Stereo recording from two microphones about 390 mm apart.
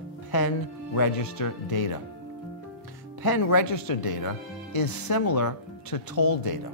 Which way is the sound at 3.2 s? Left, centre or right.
Left.